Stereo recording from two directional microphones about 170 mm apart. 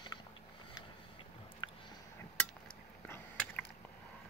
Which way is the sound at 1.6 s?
30° left (ahead or behind).